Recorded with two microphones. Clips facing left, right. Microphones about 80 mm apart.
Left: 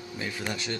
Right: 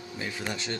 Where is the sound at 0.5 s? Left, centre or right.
Right.